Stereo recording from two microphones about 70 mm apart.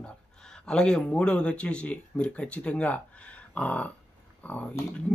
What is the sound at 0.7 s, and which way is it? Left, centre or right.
Speech, centre.